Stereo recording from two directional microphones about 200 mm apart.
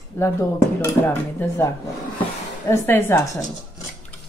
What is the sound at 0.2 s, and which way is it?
Speech, 10° left (ahead or behind).